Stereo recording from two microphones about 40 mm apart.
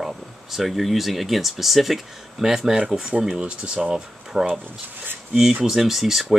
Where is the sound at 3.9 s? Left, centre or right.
Centre.